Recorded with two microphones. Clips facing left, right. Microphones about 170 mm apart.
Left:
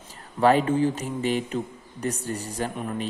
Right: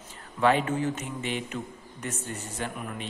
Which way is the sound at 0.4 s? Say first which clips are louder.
Left 5 dB; 40° left (ahead or behind).